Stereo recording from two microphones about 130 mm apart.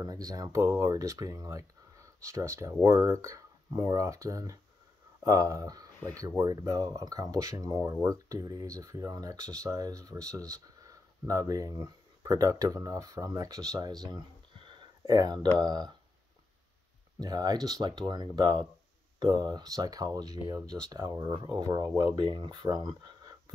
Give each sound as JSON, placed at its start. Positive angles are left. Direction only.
{"t": 0.0, "sound": "speech", "side_deg": -30}
{"t": 14.8, "sound": "a sound", "side_deg": -30}
{"t": 15.6, "sound": "speech", "side_deg": -30}
{"t": 17.2, "sound": "speech", "side_deg": -30}